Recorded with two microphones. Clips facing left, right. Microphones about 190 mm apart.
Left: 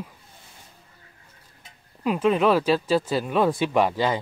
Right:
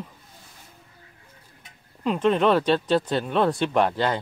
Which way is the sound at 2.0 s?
5° left (ahead or behind).